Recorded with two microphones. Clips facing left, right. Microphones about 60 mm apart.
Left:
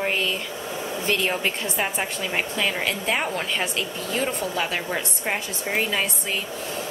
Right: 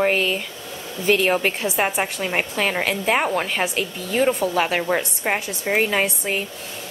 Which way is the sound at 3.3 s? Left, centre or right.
Centre.